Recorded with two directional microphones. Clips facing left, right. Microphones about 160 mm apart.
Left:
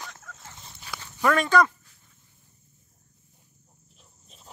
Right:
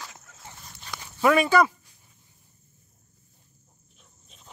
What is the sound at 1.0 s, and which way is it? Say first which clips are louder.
Speech: right 3 dB; 10° right (ahead or behind).